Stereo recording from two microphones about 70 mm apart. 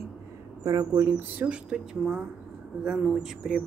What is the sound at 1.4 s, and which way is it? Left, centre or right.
Speech, right.